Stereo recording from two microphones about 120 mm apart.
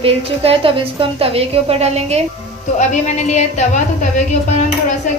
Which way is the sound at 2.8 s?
75° left (ahead or behind).